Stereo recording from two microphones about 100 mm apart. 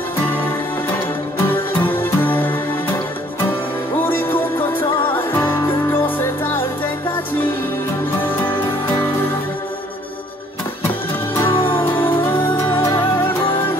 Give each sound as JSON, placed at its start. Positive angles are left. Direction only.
{"t": 1.8, "sound": "music", "side_deg": 20}
{"t": 4.0, "sound": "music", "side_deg": 20}
{"t": 11.5, "sound": "music", "side_deg": 65}
{"t": 12.7, "sound": "music", "side_deg": 30}